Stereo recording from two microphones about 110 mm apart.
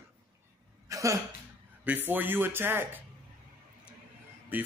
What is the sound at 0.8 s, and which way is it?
Speech, 30° right (ahead or behind).